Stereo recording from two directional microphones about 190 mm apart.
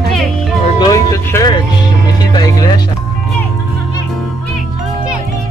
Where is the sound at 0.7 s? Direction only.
15° left (ahead or behind).